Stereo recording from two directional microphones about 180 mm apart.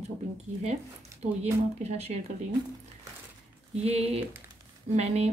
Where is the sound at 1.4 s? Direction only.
35° right (ahead or behind).